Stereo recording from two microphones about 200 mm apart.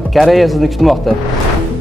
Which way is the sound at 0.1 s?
Centre (ahead or behind).